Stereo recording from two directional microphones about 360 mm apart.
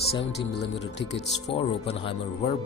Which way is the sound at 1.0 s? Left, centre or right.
Left.